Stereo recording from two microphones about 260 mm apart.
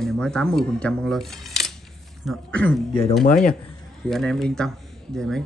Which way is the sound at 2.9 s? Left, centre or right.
Left.